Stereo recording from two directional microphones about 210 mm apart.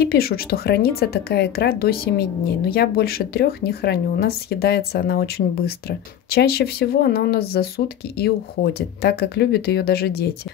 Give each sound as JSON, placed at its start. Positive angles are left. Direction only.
{"t": 0.0, "sound": "a woman's voice", "side_deg": 45}